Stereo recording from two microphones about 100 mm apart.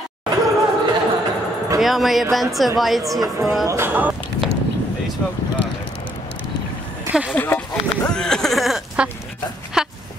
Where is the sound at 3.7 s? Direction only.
25° right (ahead or behind).